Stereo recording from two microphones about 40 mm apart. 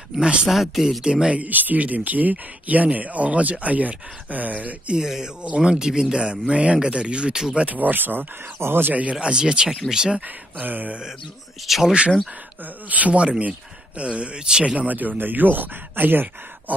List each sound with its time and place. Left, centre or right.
0.2 s speech: right
0.5 s speech: centre
1.0 s speech: right
1.3 s speech: right
4.9 s speech: centre
7.6 s speech: right
8.6 s speech: right
9.2 s speech: right
10.6 s speech: right
11.6 s speech: centre
12.9 s speech: right
14.8 s speech: right